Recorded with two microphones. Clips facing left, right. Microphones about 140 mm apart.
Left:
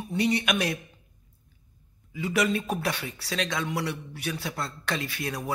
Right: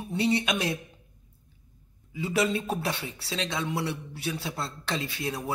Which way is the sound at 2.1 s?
25° right (ahead or behind).